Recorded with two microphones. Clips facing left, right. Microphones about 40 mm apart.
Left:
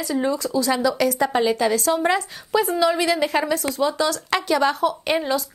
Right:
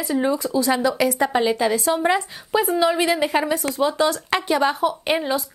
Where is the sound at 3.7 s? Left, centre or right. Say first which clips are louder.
Right 3 dB; right.